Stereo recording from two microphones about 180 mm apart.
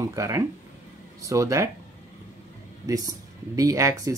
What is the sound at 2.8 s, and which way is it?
Speech, 20° right (ahead or behind).